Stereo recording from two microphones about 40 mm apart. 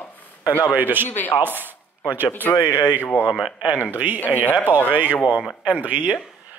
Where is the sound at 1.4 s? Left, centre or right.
Right.